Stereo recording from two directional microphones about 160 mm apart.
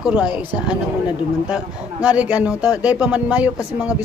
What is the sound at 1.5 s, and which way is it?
Speech, 5° right (ahead or behind).